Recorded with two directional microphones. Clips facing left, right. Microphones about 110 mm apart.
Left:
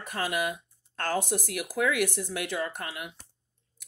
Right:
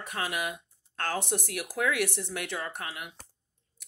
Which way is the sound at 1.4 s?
65° right (ahead or behind).